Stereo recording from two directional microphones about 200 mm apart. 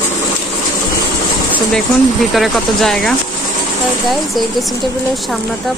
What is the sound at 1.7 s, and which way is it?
Speech, centre (ahead or behind).